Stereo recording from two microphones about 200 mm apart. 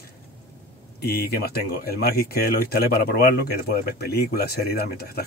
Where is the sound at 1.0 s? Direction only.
50° left (ahead or behind).